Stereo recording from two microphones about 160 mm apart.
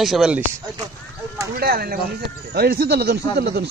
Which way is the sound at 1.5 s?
70° right (ahead or behind).